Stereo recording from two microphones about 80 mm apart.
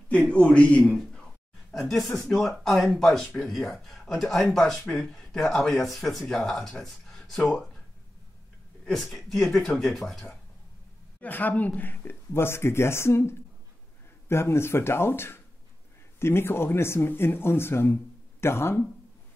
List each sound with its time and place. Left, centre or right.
0.1 s speech: centre
1.7 s speech: centre
8.8 s speech: centre
11.1 s speech: left